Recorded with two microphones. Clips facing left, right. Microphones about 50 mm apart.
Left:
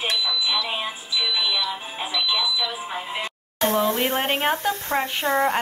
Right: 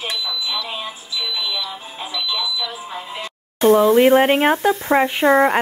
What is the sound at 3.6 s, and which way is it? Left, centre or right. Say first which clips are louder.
Speech: right 9 dB; centre.